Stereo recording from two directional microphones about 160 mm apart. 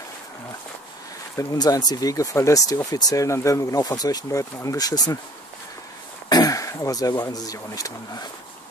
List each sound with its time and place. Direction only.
1.3 s speech: 20° left (ahead or behind)
6.2 s speech: 25° left (ahead or behind)